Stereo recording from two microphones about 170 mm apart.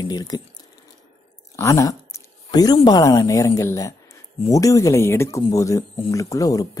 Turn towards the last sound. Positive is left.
turn(degrees=20)  # may be behind; listen again after turning